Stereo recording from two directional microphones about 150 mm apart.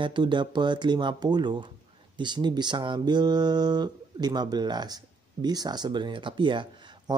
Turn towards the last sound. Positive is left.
turn(degrees=-30)  # may be behind; listen again after turning